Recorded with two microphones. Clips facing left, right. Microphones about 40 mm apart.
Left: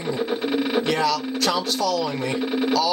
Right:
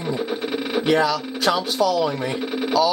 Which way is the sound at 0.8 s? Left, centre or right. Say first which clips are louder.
Right 3 dB; centre.